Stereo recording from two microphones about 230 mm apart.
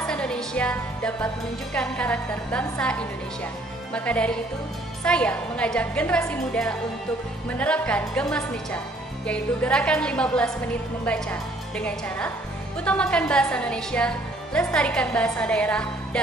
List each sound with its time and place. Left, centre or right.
0.0 s a woman's voice: centre